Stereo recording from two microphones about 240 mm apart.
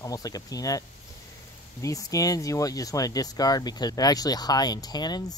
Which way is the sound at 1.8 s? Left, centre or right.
Centre.